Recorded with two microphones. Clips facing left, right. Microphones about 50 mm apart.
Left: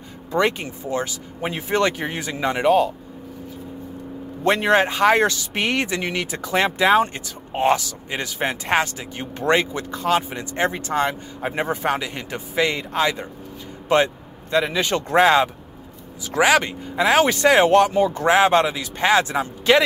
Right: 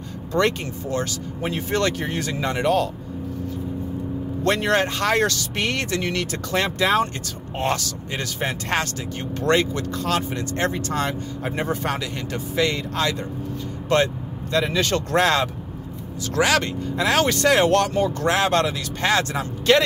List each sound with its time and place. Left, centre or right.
0.3 s speech: centre
4.4 s speech: centre